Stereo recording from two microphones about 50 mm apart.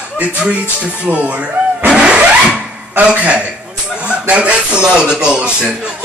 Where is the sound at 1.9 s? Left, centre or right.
Right.